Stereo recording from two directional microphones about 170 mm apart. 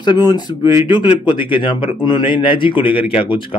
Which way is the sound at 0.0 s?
25° left (ahead or behind).